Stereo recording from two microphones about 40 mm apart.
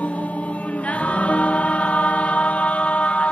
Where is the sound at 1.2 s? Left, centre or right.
Left.